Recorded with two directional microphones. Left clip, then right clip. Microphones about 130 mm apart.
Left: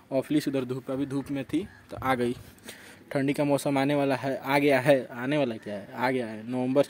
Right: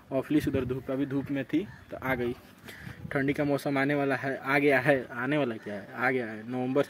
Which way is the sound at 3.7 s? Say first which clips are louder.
Left 2 dB; 35° left (ahead or behind).